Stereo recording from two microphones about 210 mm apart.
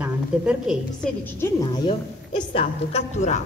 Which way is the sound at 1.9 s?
25° left (ahead or behind).